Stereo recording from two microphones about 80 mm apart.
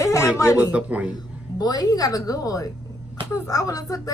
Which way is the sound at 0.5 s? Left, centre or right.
Centre.